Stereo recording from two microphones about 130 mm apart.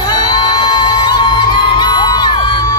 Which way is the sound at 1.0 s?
35° left (ahead or behind).